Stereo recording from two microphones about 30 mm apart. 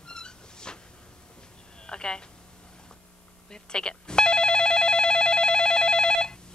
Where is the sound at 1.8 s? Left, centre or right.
Left.